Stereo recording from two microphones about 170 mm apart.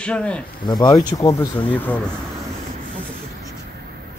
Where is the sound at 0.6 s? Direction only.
25° left (ahead or behind).